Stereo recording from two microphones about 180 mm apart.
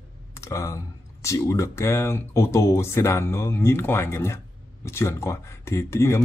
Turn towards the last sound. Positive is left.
turn(degrees=15)  # may be behind; listen again after turning